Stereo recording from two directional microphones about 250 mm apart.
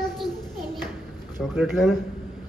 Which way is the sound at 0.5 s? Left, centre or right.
Centre.